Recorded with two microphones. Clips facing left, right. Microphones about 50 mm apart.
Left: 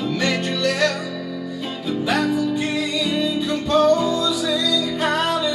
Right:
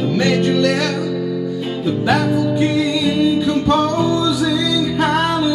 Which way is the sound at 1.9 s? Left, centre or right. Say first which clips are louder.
Right 4 dB; right.